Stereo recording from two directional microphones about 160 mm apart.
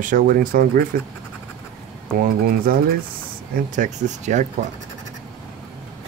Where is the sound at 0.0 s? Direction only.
60° right (ahead or behind).